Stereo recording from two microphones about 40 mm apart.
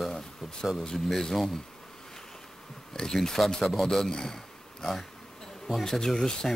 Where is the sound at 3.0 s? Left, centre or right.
Centre.